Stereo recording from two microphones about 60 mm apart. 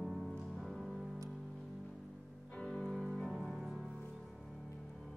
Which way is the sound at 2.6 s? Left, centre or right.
Centre.